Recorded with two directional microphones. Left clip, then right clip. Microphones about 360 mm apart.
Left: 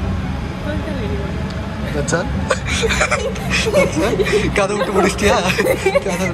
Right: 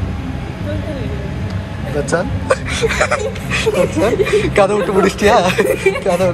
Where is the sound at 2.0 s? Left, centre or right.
Centre.